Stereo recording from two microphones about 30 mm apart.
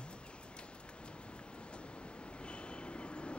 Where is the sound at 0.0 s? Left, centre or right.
Left.